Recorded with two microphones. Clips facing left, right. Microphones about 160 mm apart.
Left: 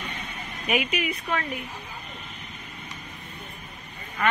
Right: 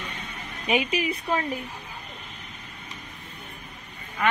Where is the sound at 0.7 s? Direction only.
30° right (ahead or behind).